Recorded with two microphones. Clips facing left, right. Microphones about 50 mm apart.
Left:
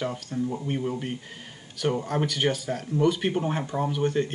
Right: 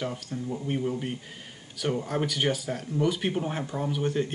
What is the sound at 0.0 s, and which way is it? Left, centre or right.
Speech, centre.